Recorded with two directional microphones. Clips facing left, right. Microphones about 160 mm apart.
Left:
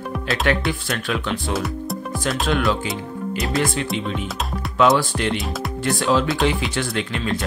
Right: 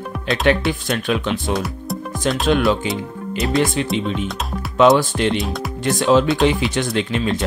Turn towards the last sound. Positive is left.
turn(degrees=-20)  # may be behind; listen again after turning